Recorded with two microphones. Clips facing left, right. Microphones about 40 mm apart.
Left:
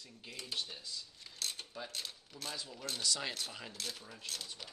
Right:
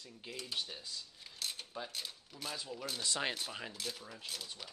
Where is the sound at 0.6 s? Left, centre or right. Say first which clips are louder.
Even; centre.